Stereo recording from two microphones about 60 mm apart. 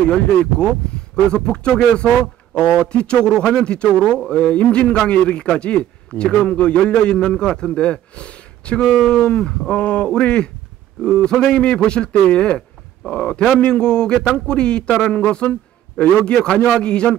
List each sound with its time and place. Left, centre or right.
0.1 s a man's voice: centre